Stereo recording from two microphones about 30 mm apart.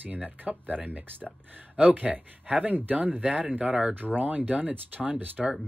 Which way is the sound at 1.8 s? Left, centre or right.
Right.